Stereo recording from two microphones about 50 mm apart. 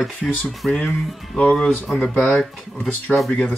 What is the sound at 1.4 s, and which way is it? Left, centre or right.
Speech, centre.